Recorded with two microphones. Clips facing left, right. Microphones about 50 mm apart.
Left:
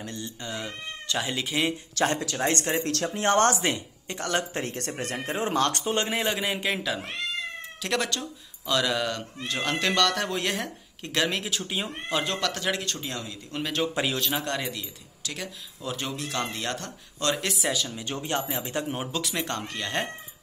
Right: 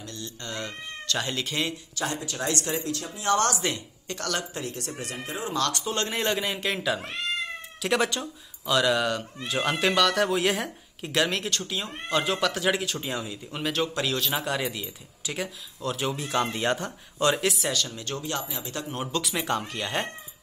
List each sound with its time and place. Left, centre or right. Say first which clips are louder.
0.0 s speech: left 2 dB; left
0.4 s speech: right 2 dB; centre
2.3 s speech: left 3 dB; left
4.6 s speech: left 3 dB; left
6.1 s speech: even; centre
7.8 s speech: right 3 dB; centre
11.6 s speech: left 1 dB; centre
12.1 s speech: right 3 dB; centre
15.8 s speech: right 3 dB; centre
16.1 s speech: right 5 dB; centre
18.2 s speech: left 6 dB; left
19.1 s speech: right 6 dB; centre